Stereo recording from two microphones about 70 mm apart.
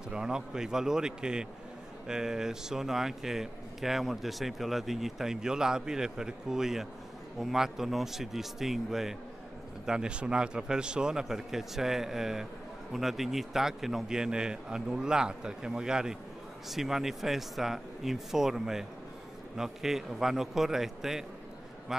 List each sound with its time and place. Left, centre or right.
0.1 s speech: centre